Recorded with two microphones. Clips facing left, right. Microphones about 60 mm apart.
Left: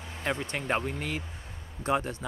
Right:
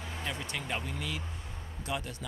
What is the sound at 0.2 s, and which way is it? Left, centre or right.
Speech, left.